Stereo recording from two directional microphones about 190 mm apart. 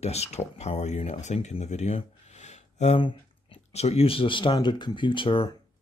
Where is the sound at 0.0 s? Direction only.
35° left (ahead or behind).